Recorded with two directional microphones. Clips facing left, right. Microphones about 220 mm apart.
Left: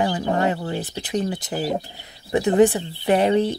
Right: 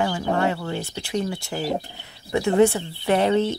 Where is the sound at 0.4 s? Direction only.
20° left (ahead or behind).